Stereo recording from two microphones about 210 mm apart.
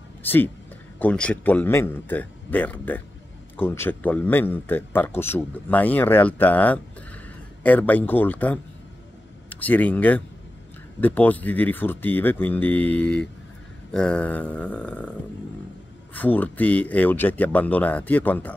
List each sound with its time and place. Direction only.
0.2 s a man's voice: 10° left (ahead or behind)
16.1 s a man's voice: 10° left (ahead or behind)